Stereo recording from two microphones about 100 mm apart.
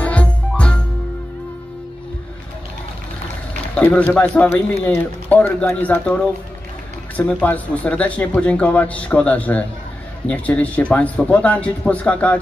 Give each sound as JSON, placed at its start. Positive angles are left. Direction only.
{"t": 0.0, "sound": "music", "side_deg": 15}
{"t": 3.7, "sound": "speech", "side_deg": 15}